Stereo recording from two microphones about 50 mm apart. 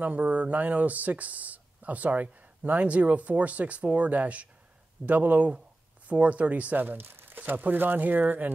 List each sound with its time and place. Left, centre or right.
0.0 s speech: right